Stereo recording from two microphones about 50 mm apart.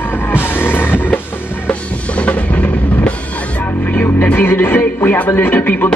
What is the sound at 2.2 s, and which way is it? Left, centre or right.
Music, left.